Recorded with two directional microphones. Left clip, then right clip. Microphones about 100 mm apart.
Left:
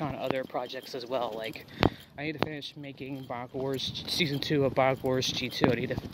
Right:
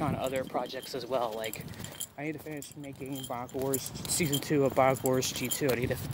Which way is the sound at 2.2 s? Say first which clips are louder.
Left 6 dB; 45° left (ahead or behind).